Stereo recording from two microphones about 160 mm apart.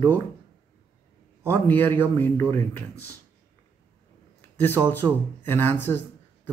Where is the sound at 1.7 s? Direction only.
10° left (ahead or behind).